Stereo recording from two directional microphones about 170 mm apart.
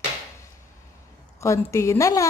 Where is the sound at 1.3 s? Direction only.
15° left (ahead or behind).